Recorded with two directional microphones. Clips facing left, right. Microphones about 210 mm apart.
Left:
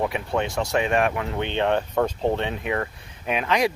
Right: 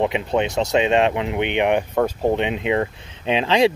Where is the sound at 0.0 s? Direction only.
20° right (ahead or behind).